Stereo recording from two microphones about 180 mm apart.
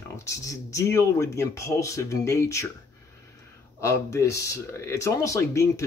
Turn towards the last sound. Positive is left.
turn(degrees=15)  # may be behind; listen again after turning